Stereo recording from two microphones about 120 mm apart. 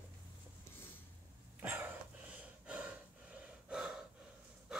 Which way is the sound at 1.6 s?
15° right (ahead or behind).